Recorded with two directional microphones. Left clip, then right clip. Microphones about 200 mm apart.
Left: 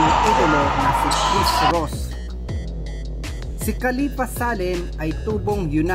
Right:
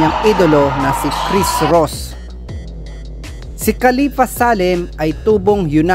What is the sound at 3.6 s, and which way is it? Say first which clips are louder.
Speech: right 10 dB; 35° right (ahead or behind).